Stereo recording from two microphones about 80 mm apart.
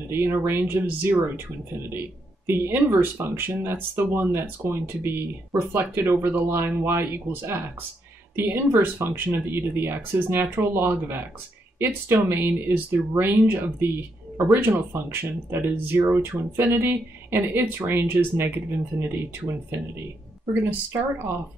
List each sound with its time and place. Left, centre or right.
0.1 s speech: right
20.7 s speech: right